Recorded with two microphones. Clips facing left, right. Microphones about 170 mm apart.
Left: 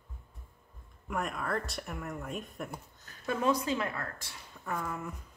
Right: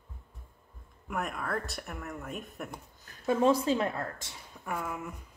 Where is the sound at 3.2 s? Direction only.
25° right (ahead or behind).